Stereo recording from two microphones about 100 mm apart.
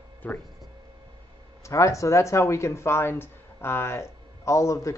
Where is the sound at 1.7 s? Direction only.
30° left (ahead or behind).